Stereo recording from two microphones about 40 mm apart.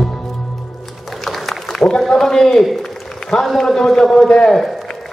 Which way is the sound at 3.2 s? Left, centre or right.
Centre.